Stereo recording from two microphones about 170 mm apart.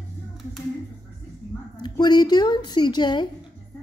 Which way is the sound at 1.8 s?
25° left (ahead or behind).